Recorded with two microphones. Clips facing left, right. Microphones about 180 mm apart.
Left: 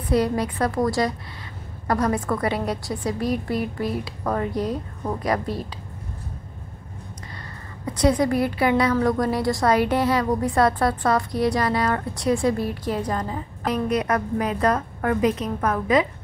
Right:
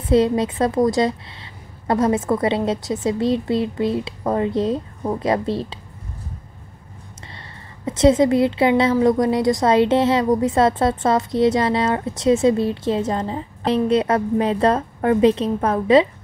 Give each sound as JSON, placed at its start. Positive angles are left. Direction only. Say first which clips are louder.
{"t": 0.1, "sound": "a woman's voice", "louder": "right 5 dB", "side_deg": -25}
{"t": 7.8, "sound": "a woman's voice", "louder": "right 5 dB", "side_deg": -25}